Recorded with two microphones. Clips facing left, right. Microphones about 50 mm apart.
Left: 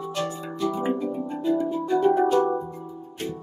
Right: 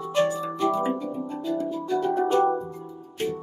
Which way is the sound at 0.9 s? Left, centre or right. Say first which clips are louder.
Left 2 dB; centre.